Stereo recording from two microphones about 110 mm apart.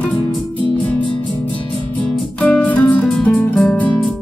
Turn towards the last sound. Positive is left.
turn(degrees=10)  # may be behind; listen again after turning